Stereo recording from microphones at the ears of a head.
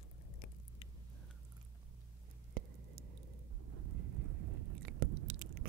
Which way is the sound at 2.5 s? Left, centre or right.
Right.